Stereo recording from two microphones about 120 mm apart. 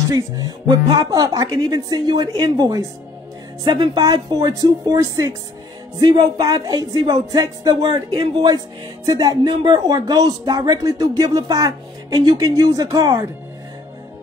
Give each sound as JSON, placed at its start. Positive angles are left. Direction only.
{"t": 0.1, "sound": "speech", "side_deg": -35}